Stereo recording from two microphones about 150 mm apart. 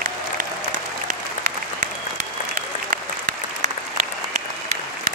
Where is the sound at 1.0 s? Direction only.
55° right (ahead or behind).